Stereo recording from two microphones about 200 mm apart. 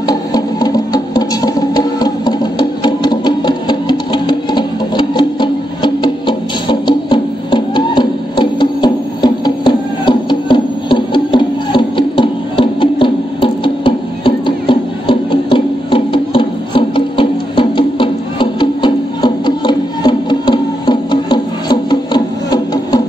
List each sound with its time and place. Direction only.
0.0 s music: 20° left (ahead or behind)
2.8 s sewing machine: 20° left (ahead or behind)